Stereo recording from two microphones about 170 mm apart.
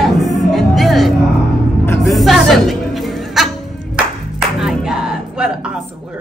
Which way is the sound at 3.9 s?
5° right (ahead or behind).